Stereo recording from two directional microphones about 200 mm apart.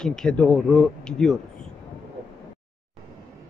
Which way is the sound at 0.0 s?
5° left (ahead or behind).